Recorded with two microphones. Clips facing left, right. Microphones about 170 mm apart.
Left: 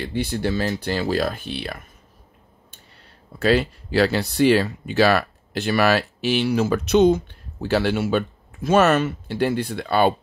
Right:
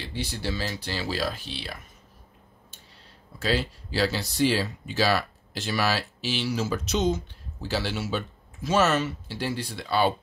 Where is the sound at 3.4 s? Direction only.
60° left (ahead or behind).